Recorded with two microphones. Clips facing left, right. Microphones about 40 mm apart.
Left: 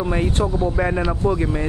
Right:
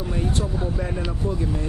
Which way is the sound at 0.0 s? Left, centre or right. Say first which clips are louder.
Left 5 dB; left.